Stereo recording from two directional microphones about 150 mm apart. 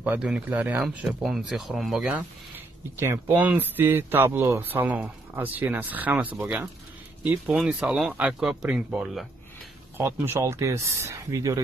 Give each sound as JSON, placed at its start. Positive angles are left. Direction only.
{"t": 0.0, "sound": "speech", "side_deg": -10}
{"t": 9.9, "sound": "speech", "side_deg": -15}